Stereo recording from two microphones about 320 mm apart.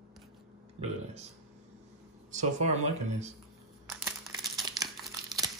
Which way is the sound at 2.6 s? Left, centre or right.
Right.